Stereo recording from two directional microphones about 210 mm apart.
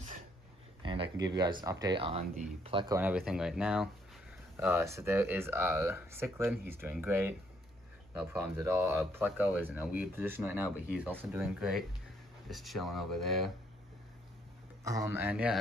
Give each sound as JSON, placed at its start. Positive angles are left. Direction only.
{"t": 0.8, "sound": "speech", "side_deg": -25}
{"t": 3.0, "sound": "speech", "side_deg": -5}
{"t": 14.8, "sound": "speech", "side_deg": -15}